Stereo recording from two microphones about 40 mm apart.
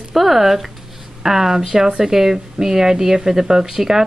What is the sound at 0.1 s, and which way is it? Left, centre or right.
Speech, centre.